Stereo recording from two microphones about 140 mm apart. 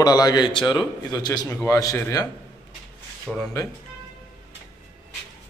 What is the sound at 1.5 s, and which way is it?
Speech, 20° left (ahead or behind).